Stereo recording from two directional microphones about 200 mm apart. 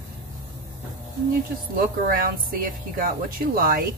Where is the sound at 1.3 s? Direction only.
45° right (ahead or behind).